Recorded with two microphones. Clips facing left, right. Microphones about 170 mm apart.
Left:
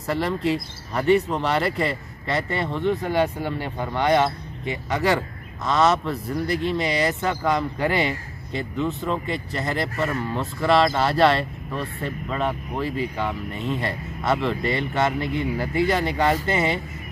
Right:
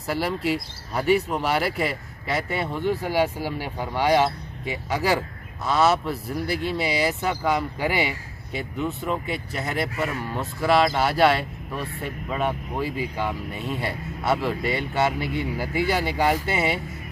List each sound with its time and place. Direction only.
0.0 s speech: 5° right (ahead or behind)